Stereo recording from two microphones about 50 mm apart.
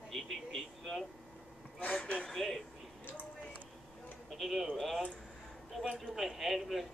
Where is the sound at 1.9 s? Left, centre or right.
Centre.